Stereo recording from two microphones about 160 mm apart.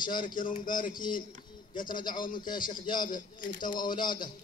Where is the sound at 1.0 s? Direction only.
30° left (ahead or behind).